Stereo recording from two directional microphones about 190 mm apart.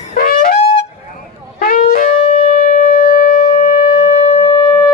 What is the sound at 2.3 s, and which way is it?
Shofar, 30° left (ahead or behind).